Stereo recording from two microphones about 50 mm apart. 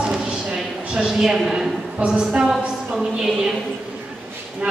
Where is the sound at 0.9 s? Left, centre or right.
Centre.